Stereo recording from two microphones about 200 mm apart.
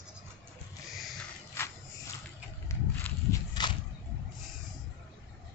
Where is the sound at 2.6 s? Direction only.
15° left (ahead or behind).